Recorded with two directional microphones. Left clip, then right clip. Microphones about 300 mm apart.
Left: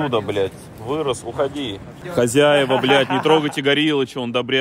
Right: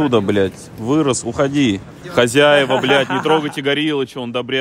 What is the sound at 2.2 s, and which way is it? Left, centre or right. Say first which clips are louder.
Speech: right 3 dB; centre.